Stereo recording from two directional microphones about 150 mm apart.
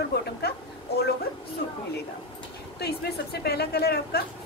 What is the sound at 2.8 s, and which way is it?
A woman's voice, 90° left.